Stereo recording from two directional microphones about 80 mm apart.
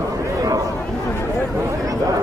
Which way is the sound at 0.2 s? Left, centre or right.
Right.